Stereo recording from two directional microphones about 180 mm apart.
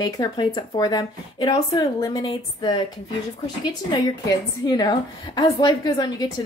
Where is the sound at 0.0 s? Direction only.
25° left (ahead or behind).